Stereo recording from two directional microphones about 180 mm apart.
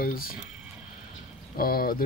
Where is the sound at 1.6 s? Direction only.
55° left (ahead or behind).